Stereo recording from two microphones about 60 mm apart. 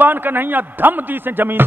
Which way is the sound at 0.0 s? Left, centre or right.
Right.